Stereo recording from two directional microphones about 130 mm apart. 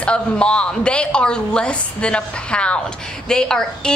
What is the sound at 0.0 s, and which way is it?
A woman's voice, 10° left (ahead or behind).